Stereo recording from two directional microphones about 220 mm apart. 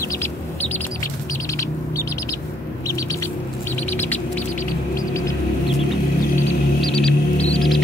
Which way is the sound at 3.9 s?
10° left (ahead or behind).